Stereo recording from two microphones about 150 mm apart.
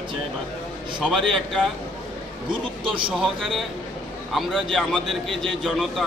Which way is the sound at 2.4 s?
35° right (ahead or behind).